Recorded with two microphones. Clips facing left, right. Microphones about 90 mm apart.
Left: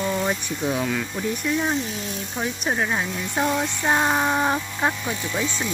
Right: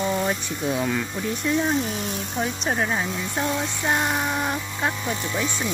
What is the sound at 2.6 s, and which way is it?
Speech, centre (ahead or behind).